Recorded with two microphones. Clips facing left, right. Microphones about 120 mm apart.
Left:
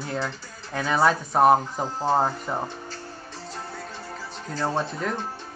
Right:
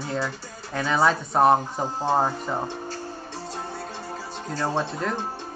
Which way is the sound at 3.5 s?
20° right (ahead or behind).